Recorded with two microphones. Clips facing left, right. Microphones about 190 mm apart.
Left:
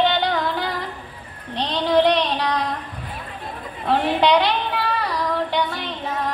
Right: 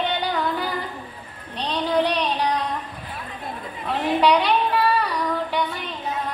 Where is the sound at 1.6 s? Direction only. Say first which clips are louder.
Left 4 dB; 80° left.